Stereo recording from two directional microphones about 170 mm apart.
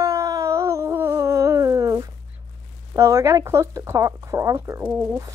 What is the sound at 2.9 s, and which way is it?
Speech, 20° right (ahead or behind).